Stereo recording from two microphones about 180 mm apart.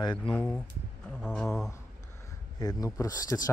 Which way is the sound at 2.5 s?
20° left (ahead or behind).